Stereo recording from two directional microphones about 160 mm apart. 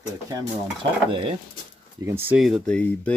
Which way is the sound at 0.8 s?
35° right (ahead or behind).